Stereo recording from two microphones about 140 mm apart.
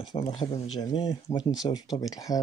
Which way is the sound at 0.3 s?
50° left (ahead or behind).